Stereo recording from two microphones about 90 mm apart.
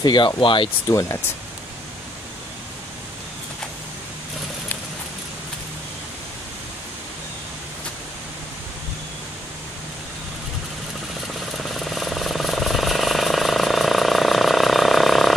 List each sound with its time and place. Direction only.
0.0 s speech: 50° left (ahead or behind)
0.4 s speech: 70° left (ahead or behind)
0.8 s speech: 35° left (ahead or behind)
11.5 s vehicle: centre (ahead or behind)